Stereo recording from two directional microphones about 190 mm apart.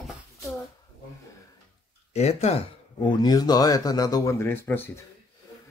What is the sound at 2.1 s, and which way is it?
Speech, 35° left (ahead or behind).